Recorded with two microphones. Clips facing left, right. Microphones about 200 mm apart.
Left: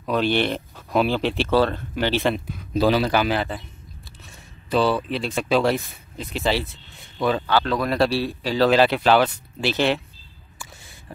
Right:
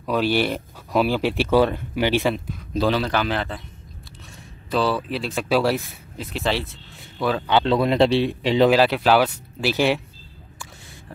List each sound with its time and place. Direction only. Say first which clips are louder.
0.0 s speech: even; 5° right (ahead or behind)
2.2 s speech: even; 5° left (ahead or behind)
4.6 s speech: left 2 dB; centre (ahead or behind)
7.4 s speech: right 3 dB; 20° right (ahead or behind)
8.6 s speech: left 1 dB; 5° right (ahead or behind)